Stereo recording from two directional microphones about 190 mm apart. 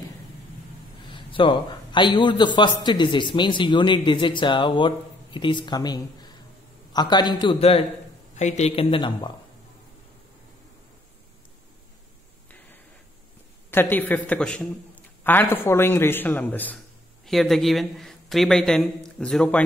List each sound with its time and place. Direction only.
1.0 s a man's voice: 25° left (ahead or behind)
13.7 s a man's voice: 10° left (ahead or behind)